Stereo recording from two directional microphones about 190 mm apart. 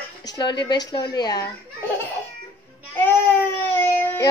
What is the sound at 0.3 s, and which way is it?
Speech, 25° left (ahead or behind).